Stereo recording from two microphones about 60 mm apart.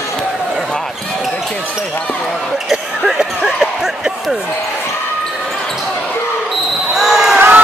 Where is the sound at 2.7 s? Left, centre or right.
Centre.